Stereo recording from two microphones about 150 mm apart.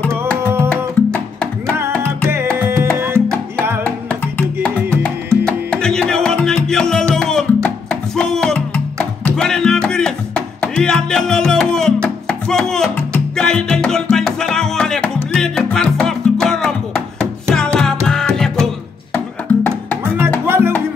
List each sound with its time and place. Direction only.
1.0 s music: 15° left (ahead or behind)
2.2 s music: 15° right (ahead or behind)
3.8 s music: 10° left (ahead or behind)
20.4 s music: 15° right (ahead or behind)